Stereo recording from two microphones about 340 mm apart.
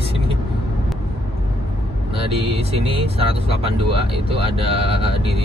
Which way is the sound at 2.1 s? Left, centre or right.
Centre.